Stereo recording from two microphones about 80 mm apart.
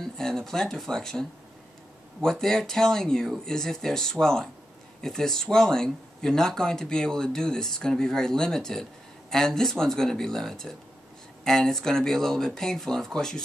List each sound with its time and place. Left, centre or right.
0.0 s speech: centre
2.2 s speech: centre